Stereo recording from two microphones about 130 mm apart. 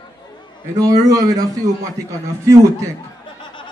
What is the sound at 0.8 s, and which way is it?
Speech, 25° right (ahead or behind).